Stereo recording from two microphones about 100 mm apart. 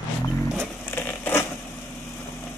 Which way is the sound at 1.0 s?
25° left (ahead or behind).